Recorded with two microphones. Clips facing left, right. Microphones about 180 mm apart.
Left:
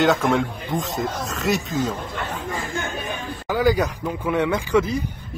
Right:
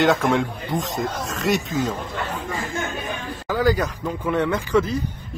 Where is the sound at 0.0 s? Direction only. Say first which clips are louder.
Even; centre (ahead or behind).